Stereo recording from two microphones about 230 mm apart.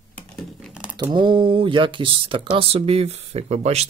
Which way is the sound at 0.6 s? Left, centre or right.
Centre.